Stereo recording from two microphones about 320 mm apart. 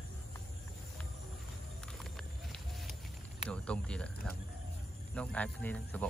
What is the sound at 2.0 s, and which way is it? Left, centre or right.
Run, centre.